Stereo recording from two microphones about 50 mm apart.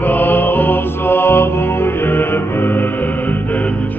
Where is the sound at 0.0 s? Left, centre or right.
Left.